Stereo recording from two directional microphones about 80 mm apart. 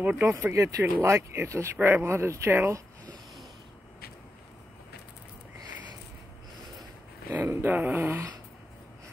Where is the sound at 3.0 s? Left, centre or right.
Right.